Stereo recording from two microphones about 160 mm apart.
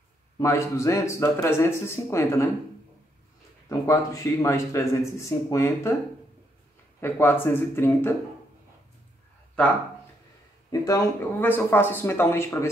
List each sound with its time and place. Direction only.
0.4 s speech: 20° left (ahead or behind)
3.6 s speech: 20° left (ahead or behind)
7.0 s speech: 15° left (ahead or behind)
10.7 s speech: 15° left (ahead or behind)